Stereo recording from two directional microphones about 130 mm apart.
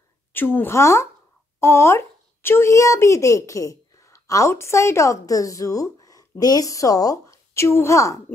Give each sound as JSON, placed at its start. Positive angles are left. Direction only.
{"t": 0.3, "sound": "a woman's voice", "side_deg": 15}